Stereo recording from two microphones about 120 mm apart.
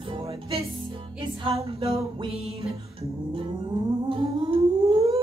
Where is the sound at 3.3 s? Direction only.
45° right (ahead or behind).